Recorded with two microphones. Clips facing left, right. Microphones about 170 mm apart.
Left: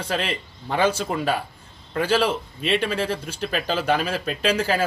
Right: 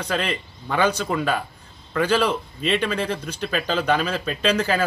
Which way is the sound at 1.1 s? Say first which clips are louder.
Right 1 dB; 40° left (ahead or behind).